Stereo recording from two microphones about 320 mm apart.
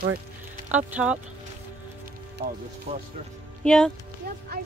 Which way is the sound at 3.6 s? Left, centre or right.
Centre.